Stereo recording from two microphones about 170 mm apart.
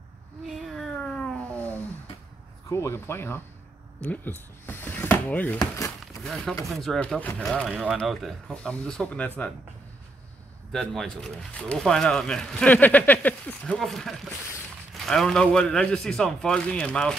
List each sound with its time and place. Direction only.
0.6 s a sound: centre (ahead or behind)
2.7 s speech: 15° left (ahead or behind)
7.6 s speech: 5° right (ahead or behind)
10.7 s speech: centre (ahead or behind)